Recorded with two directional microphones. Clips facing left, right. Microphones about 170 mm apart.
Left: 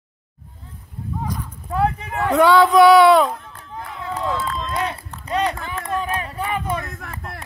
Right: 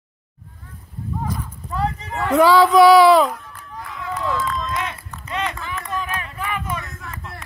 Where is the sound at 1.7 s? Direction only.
60° left (ahead or behind).